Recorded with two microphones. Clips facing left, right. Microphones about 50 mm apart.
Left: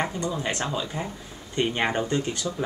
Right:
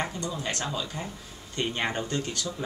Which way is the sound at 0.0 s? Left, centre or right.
Left.